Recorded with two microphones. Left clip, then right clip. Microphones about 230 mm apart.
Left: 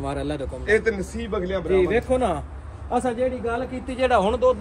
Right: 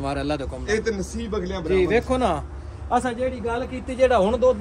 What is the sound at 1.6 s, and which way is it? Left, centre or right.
Speech, right.